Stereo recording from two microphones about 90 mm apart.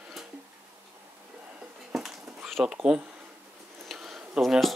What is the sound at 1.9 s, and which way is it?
Dog, centre (ahead or behind).